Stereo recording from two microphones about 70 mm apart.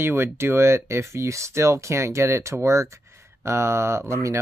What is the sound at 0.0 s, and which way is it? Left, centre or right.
Speech, right.